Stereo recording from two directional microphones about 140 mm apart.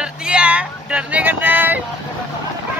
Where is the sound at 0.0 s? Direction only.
5° right (ahead or behind).